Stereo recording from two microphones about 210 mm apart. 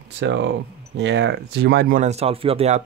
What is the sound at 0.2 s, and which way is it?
Speech, 60° right (ahead or behind).